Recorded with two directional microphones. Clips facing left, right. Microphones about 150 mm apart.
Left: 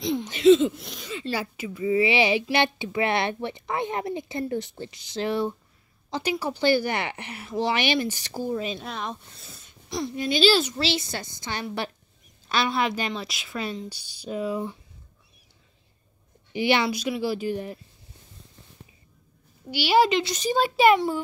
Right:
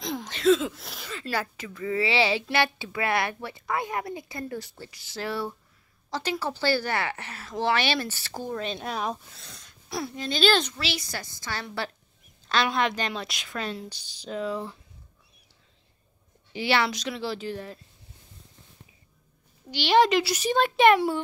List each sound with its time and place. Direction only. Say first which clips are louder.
0.5 s speech: left 5 dB; centre (ahead or behind)
1.3 s a woman's voice: right 1 dB; 10° left (ahead or behind)
6.0 s a sound: left 3 dB; 15° left (ahead or behind)
6.4 s speech: left 5 dB; 15° left (ahead or behind)
10.7 s a woman's voice: left 6 dB; 30° left (ahead or behind)
12.7 s speech: left 1 dB; 5° left (ahead or behind)
16.5 s speech: left 2 dB; 15° left (ahead or behind)
19.7 s speech: even; 5° left (ahead or behind)